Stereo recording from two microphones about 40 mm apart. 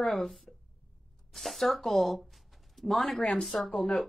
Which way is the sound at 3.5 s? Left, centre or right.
Centre.